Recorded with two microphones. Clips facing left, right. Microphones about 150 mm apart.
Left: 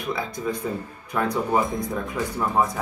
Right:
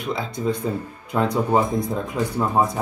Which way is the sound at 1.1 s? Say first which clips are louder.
Right 3 dB; 20° right (ahead or behind).